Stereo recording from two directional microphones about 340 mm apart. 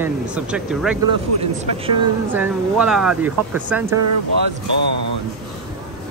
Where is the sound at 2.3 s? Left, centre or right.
Centre.